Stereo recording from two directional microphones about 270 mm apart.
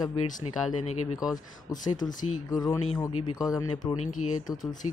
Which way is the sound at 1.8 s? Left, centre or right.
Centre.